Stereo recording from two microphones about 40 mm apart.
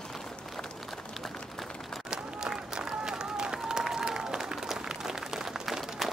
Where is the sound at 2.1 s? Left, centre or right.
Centre.